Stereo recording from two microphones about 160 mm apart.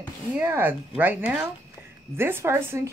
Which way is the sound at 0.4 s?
15° right (ahead or behind).